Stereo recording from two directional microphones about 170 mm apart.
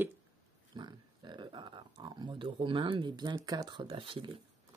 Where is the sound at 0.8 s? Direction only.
25° right (ahead or behind).